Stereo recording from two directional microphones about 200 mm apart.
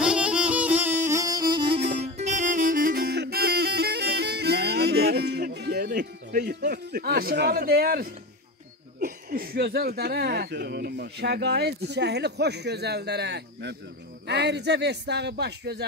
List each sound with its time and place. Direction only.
0.0 s music: 5° right (ahead or behind); by 1.8 s 25° right (ahead or behind)
2.1 s music: 35° right (ahead or behind); by 6.6 s 55° right (ahead or behind)
6.6 s speech: 45° right (ahead or behind)